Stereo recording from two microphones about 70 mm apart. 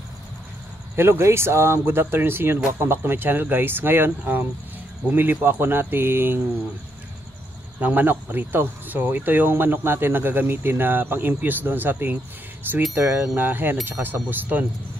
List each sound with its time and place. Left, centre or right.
0.9 s speech: right
7.8 s speech: right